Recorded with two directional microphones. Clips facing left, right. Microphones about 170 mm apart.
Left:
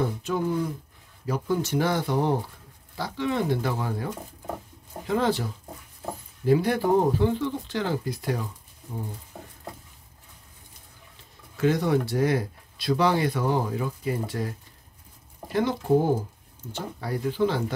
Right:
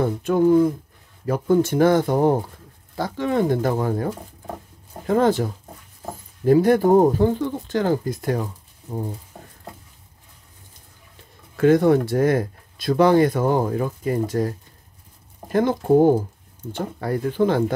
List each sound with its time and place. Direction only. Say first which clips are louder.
0.0 s speech: right 8 dB; 50° right (ahead or behind)
11.5 s speech: right 7 dB; 50° right (ahead or behind)